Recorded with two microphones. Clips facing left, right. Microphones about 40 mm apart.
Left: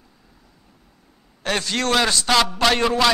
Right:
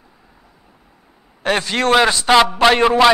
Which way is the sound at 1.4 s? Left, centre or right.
Centre.